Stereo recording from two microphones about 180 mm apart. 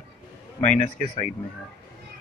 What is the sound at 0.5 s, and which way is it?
Speech, 5° left (ahead or behind).